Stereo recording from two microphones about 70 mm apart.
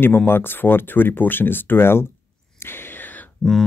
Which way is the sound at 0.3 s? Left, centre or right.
Left.